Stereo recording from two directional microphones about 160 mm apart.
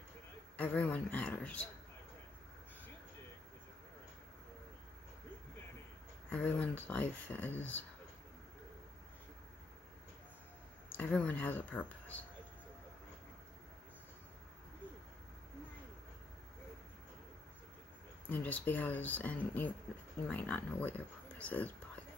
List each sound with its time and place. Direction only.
0.6 s speech: 10° left (ahead or behind)
6.3 s speech: 10° left (ahead or behind)
11.0 s speech: 10° left (ahead or behind)
18.3 s speech: 10° left (ahead or behind)